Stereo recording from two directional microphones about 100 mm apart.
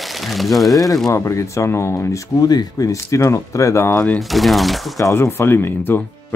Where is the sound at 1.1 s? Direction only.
30° left (ahead or behind).